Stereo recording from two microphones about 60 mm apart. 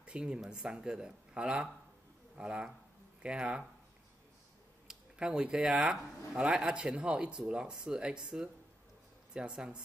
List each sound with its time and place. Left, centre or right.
0.0 s speech: centre
4.8 s speech: centre